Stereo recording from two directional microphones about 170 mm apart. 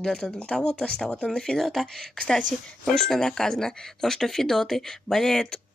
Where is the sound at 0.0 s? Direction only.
5° left (ahead or behind).